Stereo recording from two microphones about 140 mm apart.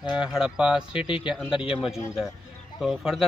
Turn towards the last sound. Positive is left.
turn(degrees=0)  # may be behind; listen again after turning